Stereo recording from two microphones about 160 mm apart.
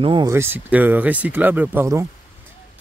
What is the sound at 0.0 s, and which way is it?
Speech, 30° right (ahead or behind).